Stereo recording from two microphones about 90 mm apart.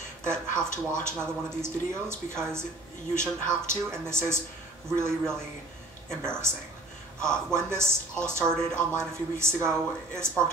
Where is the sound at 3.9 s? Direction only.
30° right (ahead or behind).